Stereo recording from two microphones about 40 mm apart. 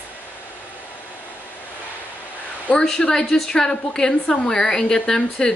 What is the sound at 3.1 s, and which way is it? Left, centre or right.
A woman's voice, centre.